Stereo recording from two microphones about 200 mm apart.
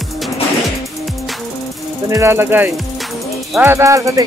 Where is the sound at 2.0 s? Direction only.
15° right (ahead or behind).